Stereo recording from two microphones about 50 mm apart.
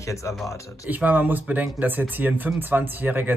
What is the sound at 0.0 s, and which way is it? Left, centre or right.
Speech, left.